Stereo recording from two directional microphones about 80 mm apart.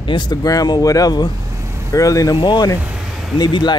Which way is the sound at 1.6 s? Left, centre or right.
Right.